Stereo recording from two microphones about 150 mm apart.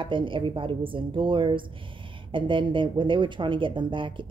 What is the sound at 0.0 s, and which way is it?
A woman's voice, 35° right (ahead or behind).